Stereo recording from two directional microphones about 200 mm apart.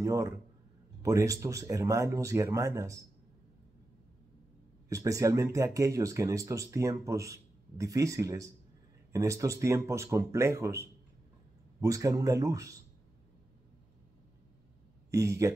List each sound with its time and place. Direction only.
0.0 s speech: 15° right (ahead or behind)
4.8 s speech: 15° right (ahead or behind)
15.0 s speech: 15° right (ahead or behind)